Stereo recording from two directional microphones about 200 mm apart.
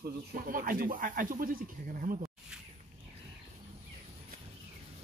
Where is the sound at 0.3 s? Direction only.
45° right (ahead or behind).